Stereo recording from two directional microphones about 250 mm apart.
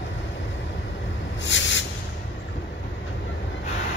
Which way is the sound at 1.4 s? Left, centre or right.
Left.